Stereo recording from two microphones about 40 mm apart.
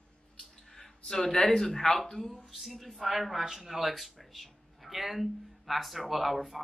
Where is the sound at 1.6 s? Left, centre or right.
Centre.